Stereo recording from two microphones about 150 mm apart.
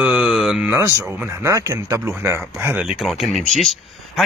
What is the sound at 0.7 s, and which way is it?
Speech, 20° right (ahead or behind).